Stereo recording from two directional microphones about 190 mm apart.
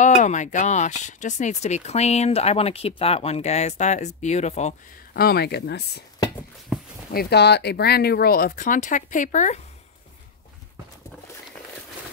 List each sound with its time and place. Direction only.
0.0 s speech: 40° left (ahead or behind)
5.1 s speech: 55° left (ahead or behind)
7.1 s speech: 55° left (ahead or behind); by 9.6 s 40° left (ahead or behind)